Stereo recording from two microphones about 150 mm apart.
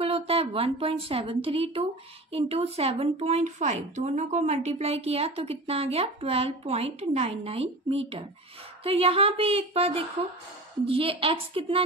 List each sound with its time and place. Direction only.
0.0 s a woman's voice: 40° right (ahead or behind)